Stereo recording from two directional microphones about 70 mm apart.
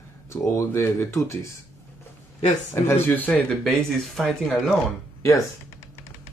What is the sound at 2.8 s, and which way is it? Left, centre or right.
Speech, left.